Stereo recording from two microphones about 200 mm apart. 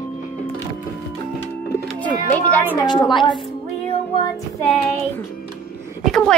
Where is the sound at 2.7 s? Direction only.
20° left (ahead or behind).